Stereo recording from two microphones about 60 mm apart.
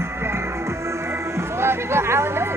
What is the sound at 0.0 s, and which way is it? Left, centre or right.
Speech, right.